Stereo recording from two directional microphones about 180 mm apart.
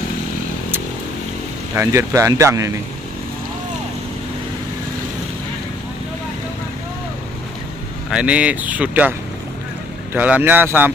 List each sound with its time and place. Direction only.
1.8 s speech: 15° right (ahead or behind)
8.1 s speech: 5° right (ahead or behind)
10.1 s speech: 10° right (ahead or behind)